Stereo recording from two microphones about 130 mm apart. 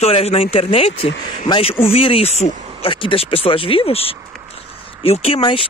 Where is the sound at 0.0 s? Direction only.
50° left (ahead or behind).